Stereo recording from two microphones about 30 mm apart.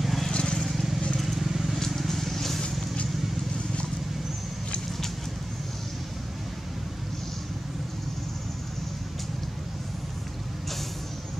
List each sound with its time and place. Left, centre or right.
0.0 s vehicle: centre
0.3 s vehicle: left
1.2 s vehicle: centre
1.9 s vehicle: centre